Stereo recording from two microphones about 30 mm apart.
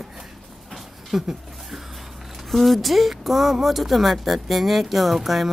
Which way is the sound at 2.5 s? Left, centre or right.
Centre.